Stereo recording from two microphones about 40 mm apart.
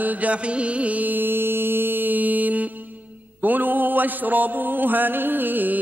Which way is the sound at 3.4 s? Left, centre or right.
Right.